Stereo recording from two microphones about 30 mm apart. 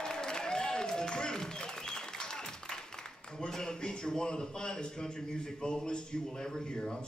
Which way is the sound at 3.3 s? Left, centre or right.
Centre.